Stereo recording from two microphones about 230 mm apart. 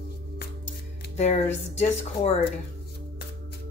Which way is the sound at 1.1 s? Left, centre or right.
Left.